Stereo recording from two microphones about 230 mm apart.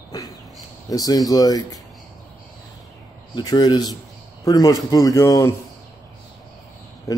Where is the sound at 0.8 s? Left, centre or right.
Centre.